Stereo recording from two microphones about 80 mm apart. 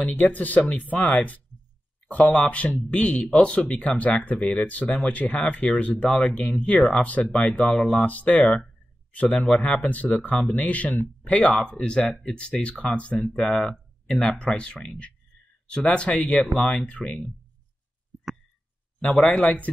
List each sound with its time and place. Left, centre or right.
0.0 s speech: left
18.9 s speech: centre